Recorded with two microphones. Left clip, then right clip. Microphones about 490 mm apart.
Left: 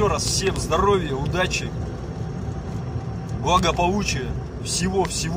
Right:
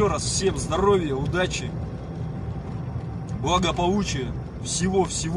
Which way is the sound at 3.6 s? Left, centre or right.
Right.